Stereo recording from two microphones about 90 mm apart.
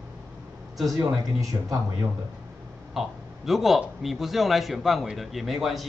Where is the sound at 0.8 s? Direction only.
40° right (ahead or behind).